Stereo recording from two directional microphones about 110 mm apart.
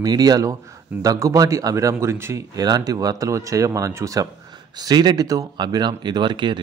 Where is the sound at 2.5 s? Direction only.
35° right (ahead or behind).